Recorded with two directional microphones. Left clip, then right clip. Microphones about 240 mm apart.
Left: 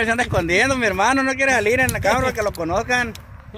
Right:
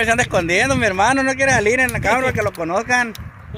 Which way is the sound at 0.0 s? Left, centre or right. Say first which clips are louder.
Right 3 dB; right.